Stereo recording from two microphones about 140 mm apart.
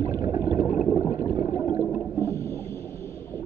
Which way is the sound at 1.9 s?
20° left (ahead or behind).